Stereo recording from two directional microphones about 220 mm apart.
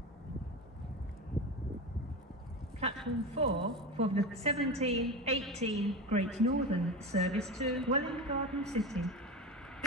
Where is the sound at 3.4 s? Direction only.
25° right (ahead or behind).